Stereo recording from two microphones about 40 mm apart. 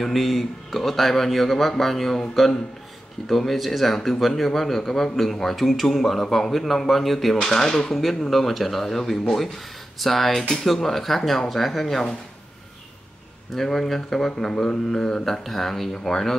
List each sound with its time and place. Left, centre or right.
0.0 s speech: centre
7.4 s speech: centre
7.9 s speech: centre
13.6 s speech: centre